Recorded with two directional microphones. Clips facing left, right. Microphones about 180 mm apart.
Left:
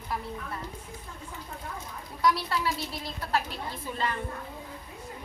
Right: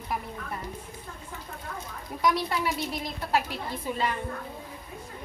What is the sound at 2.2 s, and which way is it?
A woman's voice, 15° right (ahead or behind).